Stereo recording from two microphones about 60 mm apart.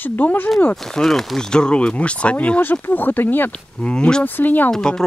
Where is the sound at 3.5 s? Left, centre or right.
Centre.